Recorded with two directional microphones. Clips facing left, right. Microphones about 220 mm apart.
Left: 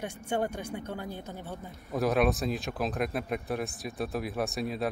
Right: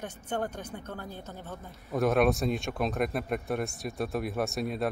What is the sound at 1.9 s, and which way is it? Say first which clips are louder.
Speech: right 2 dB; centre (ahead or behind).